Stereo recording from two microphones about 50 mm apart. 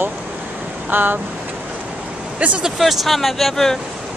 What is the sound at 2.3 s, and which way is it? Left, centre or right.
Speech, right.